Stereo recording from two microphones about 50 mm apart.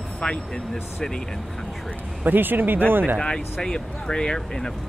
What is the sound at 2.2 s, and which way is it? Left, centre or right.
Speech, right.